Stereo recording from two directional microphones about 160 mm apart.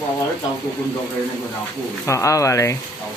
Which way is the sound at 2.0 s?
20° left (ahead or behind).